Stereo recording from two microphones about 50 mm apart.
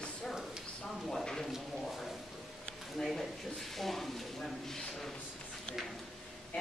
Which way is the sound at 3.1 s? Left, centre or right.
Centre.